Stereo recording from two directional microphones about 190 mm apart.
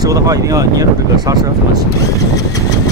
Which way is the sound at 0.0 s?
20° right (ahead or behind).